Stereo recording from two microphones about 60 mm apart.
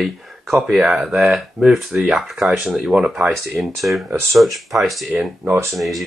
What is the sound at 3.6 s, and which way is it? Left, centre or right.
Speech, centre.